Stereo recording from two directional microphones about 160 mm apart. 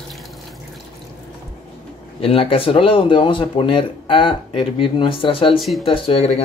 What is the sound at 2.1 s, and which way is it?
Speech, 35° left (ahead or behind).